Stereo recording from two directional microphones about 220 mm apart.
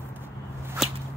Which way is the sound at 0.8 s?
Centre (ahead or behind).